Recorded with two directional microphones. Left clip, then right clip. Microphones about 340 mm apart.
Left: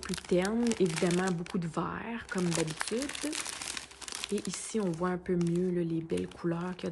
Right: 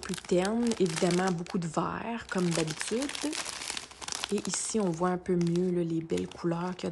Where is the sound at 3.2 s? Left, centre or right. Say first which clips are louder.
Right 2 dB; centre.